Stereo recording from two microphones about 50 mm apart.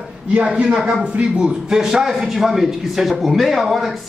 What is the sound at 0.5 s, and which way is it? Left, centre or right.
Speech, right.